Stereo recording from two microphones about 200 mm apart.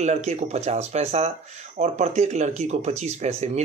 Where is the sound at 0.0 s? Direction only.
35° right (ahead or behind).